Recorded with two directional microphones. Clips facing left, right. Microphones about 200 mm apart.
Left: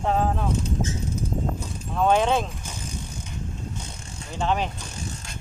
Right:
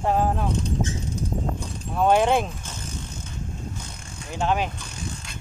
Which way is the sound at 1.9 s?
10° right (ahead or behind).